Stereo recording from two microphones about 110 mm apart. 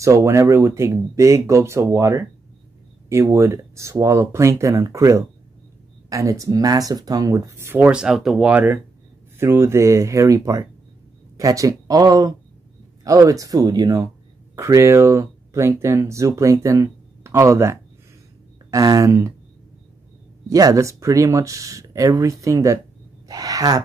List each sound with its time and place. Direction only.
0.0 s speech: 25° right (ahead or behind)
20.4 s speech: 30° right (ahead or behind)
23.2 s a sound: 35° right (ahead or behind)